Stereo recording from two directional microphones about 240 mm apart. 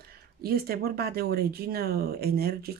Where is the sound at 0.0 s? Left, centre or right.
Right.